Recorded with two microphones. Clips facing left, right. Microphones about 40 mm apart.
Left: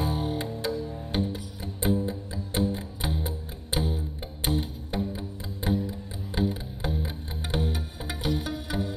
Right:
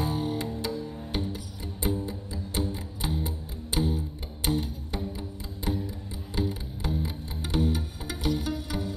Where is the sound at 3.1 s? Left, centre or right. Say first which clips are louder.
Right 1 dB; centre.